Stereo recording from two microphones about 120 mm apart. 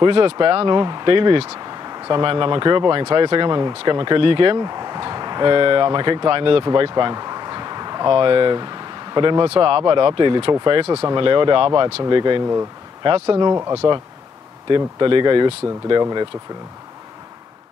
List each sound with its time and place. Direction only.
0.0 s speech: 40° right (ahead or behind)
6.6 s speech: 35° right (ahead or behind)
10.9 s speech: 25° right (ahead or behind)
11.1 s speech: 45° right (ahead or behind)
14.7 s speech: 40° right (ahead or behind)